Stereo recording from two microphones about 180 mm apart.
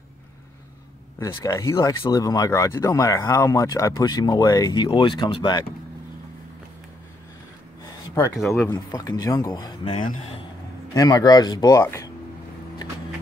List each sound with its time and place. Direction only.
1.2 s speech: 20° left (ahead or behind)
8.4 s speech: centre (ahead or behind)
8.6 s a man's voice: 20° left (ahead or behind)
11.0 s speech: 20° left (ahead or behind)